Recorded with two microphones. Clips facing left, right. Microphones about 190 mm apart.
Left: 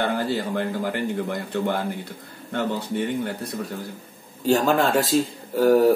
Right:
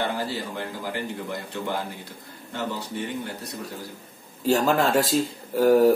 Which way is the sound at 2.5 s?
55° left (ahead or behind).